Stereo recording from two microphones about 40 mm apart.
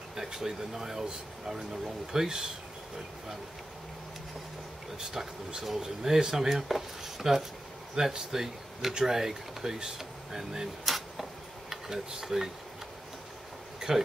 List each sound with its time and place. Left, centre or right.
0.1 s speech: centre
4.9 s speech: centre
11.7 s speech: centre
13.7 s a sound: centre